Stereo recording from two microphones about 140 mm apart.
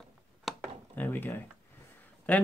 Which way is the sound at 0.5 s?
Centre (ahead or behind).